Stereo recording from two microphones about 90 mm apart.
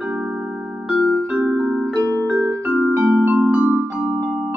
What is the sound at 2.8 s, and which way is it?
Music, 5° right (ahead or behind).